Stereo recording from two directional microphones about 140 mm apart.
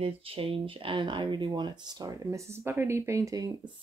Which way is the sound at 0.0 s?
40° right (ahead or behind).